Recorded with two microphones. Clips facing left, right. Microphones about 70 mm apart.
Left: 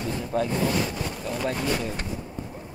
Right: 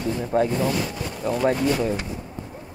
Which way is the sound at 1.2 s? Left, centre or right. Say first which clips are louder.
Right 8 dB; right.